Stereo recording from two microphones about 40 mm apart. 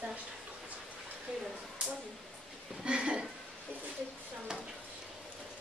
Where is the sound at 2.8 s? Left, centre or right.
Right.